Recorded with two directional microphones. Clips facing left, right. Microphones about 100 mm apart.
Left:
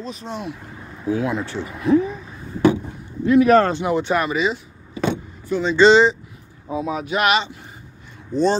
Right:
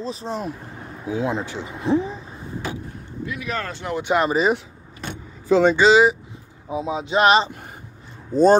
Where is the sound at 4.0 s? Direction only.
15° right (ahead or behind).